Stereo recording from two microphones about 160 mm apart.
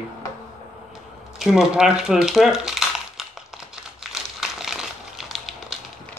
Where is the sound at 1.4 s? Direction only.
5° right (ahead or behind).